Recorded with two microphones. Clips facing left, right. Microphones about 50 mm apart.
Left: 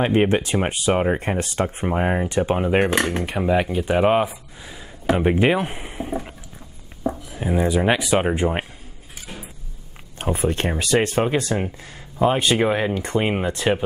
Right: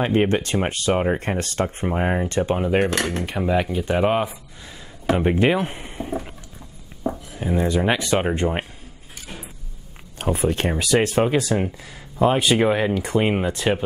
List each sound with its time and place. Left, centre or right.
0.0 s speech: centre
10.1 s speech: centre